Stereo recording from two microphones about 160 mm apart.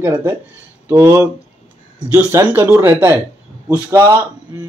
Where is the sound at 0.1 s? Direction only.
25° right (ahead or behind).